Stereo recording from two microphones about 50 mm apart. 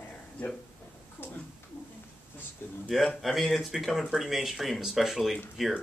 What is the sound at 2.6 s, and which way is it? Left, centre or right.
Speech, left.